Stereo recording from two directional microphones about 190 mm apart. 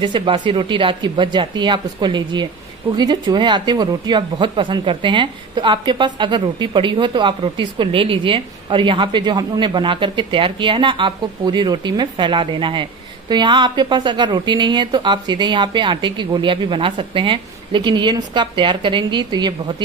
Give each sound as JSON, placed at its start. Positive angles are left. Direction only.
{"t": 0.0, "sound": "speech", "side_deg": -25}